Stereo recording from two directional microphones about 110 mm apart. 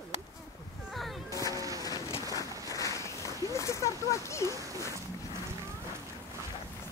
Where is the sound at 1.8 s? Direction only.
35° left (ahead or behind).